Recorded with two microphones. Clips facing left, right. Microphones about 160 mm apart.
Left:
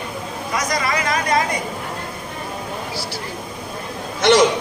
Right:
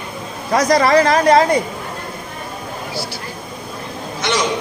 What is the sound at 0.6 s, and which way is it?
Speech, 35° right (ahead or behind).